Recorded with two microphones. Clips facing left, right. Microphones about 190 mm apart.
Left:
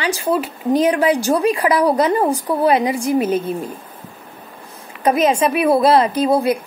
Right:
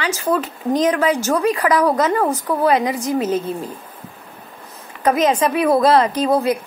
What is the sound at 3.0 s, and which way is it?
Speech, 10° left (ahead or behind).